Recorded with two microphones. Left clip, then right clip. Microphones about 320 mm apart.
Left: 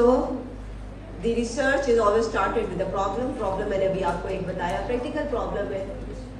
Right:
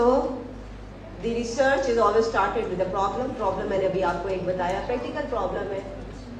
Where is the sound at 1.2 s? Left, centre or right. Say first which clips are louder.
Right 1 dB; centre.